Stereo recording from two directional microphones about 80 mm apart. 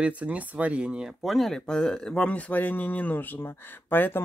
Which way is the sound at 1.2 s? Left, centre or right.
Centre.